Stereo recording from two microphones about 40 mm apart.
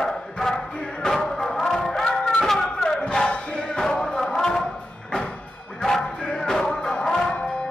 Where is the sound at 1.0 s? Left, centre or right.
Centre.